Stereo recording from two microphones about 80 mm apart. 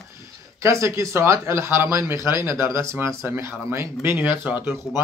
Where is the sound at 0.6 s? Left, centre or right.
Right.